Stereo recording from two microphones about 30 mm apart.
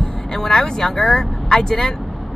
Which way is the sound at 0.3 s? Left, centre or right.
Centre.